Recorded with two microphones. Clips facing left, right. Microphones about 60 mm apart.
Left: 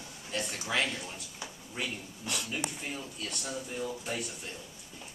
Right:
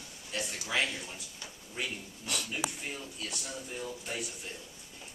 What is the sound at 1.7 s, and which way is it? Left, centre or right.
A man's voice, centre.